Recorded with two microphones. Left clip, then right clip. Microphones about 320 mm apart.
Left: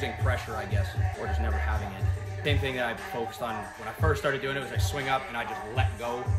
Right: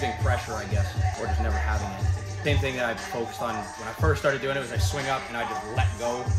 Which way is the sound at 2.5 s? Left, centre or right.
Centre.